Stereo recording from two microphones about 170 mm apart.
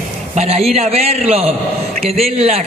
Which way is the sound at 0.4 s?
35° right (ahead or behind).